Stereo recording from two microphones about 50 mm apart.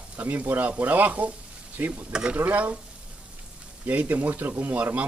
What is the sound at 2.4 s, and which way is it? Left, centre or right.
Speech, right.